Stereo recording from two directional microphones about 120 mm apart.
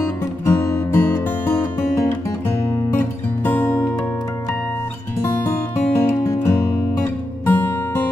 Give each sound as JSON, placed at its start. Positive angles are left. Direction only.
{"t": 0.5, "sound": "music", "side_deg": 20}
{"t": 5.4, "sound": "music", "side_deg": 20}